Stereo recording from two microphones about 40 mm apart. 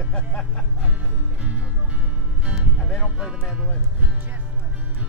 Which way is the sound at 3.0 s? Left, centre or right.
Centre.